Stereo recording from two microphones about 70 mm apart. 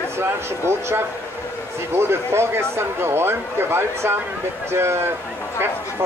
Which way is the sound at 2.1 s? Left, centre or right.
Right.